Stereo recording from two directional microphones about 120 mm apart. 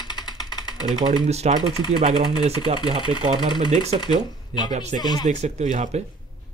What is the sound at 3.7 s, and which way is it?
Speech, 65° right (ahead or behind).